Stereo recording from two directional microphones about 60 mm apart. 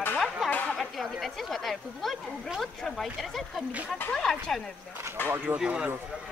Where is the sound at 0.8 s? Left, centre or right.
Centre.